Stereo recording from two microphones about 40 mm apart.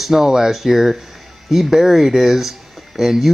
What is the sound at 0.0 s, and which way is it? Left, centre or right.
Speech, centre.